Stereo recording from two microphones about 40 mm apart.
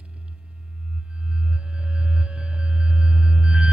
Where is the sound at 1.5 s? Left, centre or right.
Right.